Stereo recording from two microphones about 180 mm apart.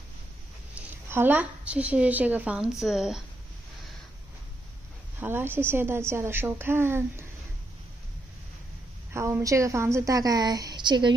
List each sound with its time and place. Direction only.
0.7 s a woman's voice: 10° right (ahead or behind)
5.2 s a woman's voice: 10° right (ahead or behind)
9.1 s a woman's voice: 15° right (ahead or behind)